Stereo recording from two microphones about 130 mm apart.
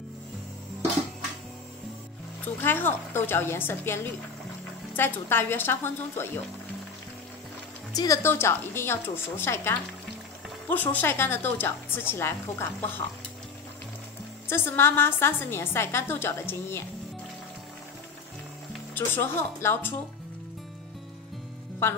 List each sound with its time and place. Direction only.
2.6 s a woman's voice: 15° left (ahead or behind)
7.9 s a woman's voice: 30° left (ahead or behind)
14.5 s a woman's voice: 15° left (ahead or behind)
18.9 s a woman's voice: 15° left (ahead or behind)